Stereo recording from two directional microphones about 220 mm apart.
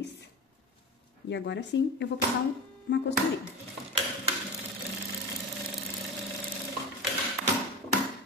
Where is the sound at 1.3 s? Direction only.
50° left (ahead or behind).